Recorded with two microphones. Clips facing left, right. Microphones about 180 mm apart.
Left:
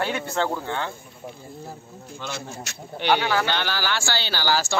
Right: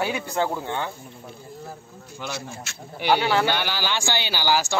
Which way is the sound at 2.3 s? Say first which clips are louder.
Even; 40° left (ahead or behind).